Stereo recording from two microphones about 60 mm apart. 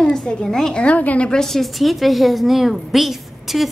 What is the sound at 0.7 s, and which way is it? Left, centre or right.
Speech, left.